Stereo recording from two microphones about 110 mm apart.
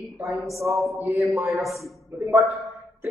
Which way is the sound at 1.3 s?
Centre (ahead or behind).